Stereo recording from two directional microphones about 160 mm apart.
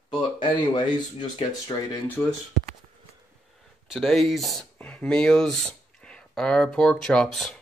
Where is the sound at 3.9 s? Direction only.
Centre (ahead or behind).